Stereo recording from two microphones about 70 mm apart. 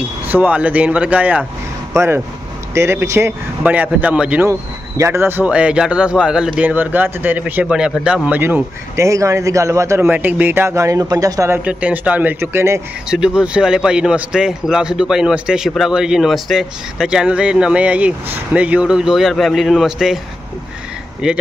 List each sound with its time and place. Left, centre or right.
0.3 s speech: right
2.0 s speech: right
3.6 s speech: right
4.5 s speech: right
5.4 s speech: centre
6.6 s speech: right
7.6 s speech: centre
8.4 s speech: right
8.9 s speech: right
11.6 s speech: right
12.4 s speech: right
13.1 s speech: centre
21.2 s speech: centre